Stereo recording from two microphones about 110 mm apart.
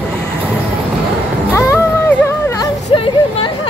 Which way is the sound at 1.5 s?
25° left (ahead or behind).